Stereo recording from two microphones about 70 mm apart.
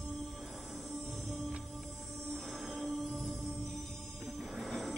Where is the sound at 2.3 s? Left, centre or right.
Centre.